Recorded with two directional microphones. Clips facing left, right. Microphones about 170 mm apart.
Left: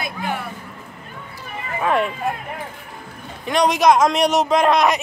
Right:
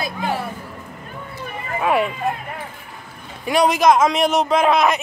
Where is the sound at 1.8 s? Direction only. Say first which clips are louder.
Right 1 dB; 5° right (ahead or behind).